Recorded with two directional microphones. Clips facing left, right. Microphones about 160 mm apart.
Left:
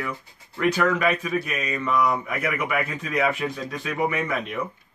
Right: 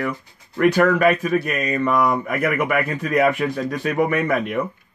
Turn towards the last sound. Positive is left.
turn(degrees=-55)  # may be behind; listen again after turning